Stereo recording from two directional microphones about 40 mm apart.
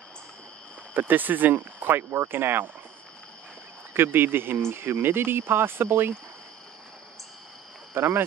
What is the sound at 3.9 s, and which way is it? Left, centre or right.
Speech, right.